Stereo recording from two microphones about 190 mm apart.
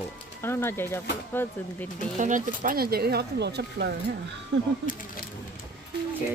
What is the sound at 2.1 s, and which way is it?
Speech, 40° right (ahead or behind).